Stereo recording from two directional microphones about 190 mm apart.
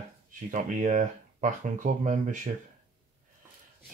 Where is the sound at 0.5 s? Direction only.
40° right (ahead or behind).